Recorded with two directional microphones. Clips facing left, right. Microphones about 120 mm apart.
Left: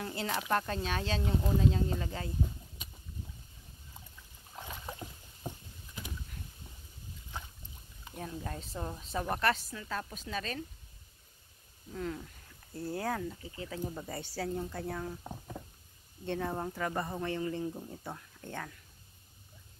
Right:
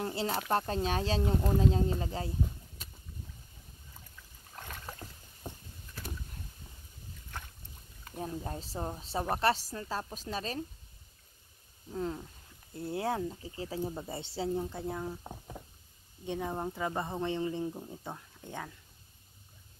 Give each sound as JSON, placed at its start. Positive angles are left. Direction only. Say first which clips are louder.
{"t": 0.0, "sound": "speech", "louder": "right 3 dB", "side_deg": -30}
{"t": 4.6, "sound": "boat", "louder": "left 2 dB", "side_deg": 10}
{"t": 8.4, "sound": "speech", "louder": "right 2 dB", "side_deg": -30}
{"t": 11.9, "sound": "speech", "louder": "right 2 dB", "side_deg": -30}